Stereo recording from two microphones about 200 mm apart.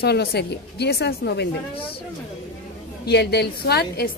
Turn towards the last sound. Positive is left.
turn(degrees=55)  # may be behind; listen again after turning